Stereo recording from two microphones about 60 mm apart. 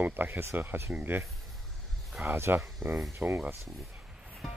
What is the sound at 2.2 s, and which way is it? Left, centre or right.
Speech, right.